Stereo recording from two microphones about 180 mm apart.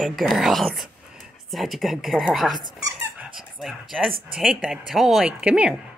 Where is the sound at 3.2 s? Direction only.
Centre (ahead or behind).